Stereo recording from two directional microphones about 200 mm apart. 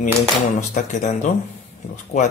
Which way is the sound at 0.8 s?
35° left (ahead or behind).